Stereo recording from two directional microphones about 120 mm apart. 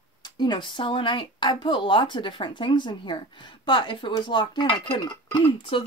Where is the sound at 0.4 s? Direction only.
40° left (ahead or behind).